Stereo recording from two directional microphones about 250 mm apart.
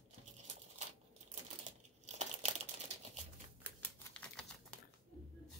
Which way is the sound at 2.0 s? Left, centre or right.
Right.